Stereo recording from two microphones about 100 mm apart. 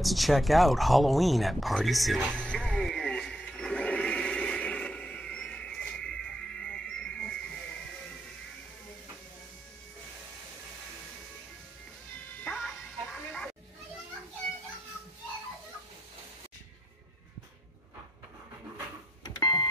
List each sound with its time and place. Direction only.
0.0 s speech: centre (ahead or behind)
2.4 s television: 10° left (ahead or behind)
12.4 s music: 10° left (ahead or behind)
19.2 s a sound: 40° left (ahead or behind)